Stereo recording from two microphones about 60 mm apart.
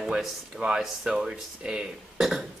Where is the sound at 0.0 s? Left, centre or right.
Centre.